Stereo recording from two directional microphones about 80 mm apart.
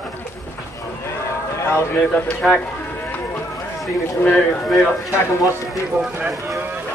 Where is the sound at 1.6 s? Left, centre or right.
Left.